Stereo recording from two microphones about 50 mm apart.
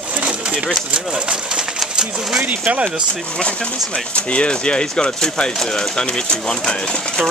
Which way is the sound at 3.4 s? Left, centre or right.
Centre.